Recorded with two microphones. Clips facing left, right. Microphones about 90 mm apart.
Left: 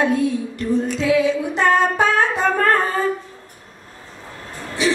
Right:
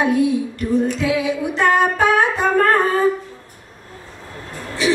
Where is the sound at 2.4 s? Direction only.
15° right (ahead or behind).